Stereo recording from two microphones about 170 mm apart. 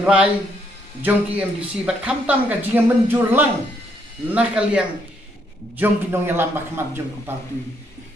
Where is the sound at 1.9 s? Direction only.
5° right (ahead or behind).